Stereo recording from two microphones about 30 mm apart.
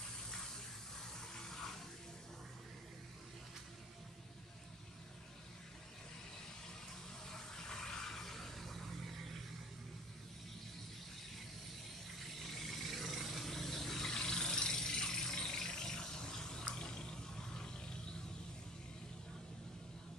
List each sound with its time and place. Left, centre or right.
1.5 s bathtub: centre
7.2 s a sound: centre
12.4 s vehicle: centre
14.1 s vehicle: left